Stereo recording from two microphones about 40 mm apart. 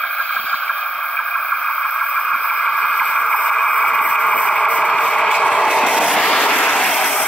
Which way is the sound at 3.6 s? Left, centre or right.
Left.